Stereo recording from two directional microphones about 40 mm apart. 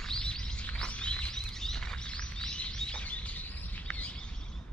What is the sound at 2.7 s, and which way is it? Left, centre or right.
Bird, left.